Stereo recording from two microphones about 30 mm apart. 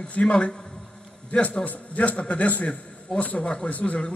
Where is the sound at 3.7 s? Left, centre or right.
Left.